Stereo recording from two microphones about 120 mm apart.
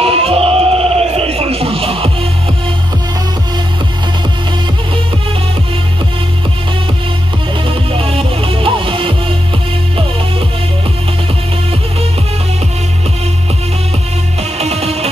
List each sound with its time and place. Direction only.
0.0 s music: 55° right (ahead or behind)
7.6 s music: 50° right (ahead or behind)
14.6 s music: 60° right (ahead or behind)